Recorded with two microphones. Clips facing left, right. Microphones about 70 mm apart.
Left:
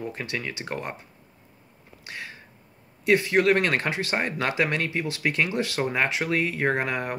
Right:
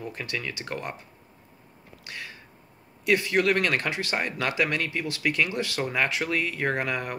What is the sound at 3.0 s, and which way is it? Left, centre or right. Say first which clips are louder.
Speech: left 3 dB; left.